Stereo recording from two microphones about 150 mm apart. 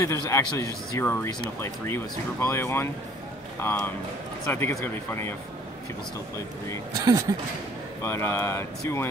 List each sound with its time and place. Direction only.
0.0 s speech: 20° left (ahead or behind)
6.9 s speech: 25° right (ahead or behind)
8.0 s speech: 15° left (ahead or behind)